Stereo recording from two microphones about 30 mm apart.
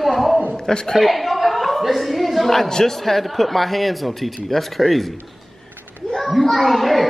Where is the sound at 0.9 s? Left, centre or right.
Centre.